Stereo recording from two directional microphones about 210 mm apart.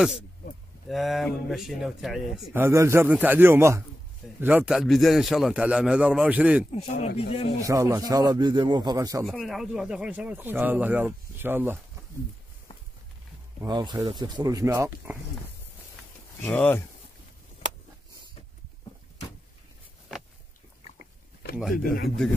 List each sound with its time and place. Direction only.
0.8 s speech: centre (ahead or behind)
6.7 s speech: 30° left (ahead or behind)
7.6 s speech: 15° right (ahead or behind)
9.2 s speech: centre (ahead or behind)
13.6 s speech: 20° right (ahead or behind)
16.4 s speech: 10° left (ahead or behind)
21.7 s speech: 45° left (ahead or behind)